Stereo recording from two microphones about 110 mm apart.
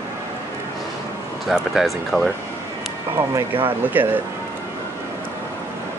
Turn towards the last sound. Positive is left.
turn(degrees=-15)  # may be behind; listen again after turning